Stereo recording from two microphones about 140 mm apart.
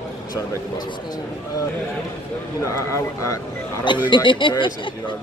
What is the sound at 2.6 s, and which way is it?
A man's voice, 20° left (ahead or behind).